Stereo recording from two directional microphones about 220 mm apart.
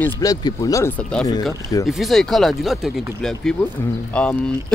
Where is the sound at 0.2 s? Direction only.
15° left (ahead or behind).